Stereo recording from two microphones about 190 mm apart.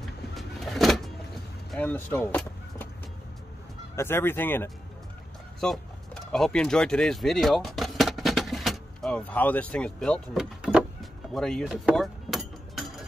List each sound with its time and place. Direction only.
0.0 s vehicle: centre (ahead or behind)
1.7 s speech: 10° left (ahead or behind)
3.9 s speech: 10° left (ahead or behind)
6.3 s a sound: 5° left (ahead or behind)